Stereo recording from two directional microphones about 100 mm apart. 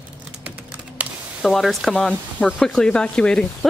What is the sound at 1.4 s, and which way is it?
Speech, centre (ahead or behind).